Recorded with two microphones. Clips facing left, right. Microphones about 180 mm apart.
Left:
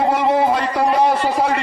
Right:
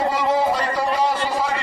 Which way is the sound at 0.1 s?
60° left (ahead or behind).